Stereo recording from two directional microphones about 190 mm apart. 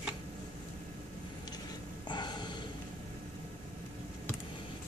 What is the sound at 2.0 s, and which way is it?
Snort, 25° left (ahead or behind).